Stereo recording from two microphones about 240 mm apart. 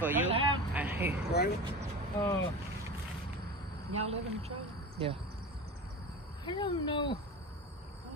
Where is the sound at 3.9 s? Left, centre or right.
Right.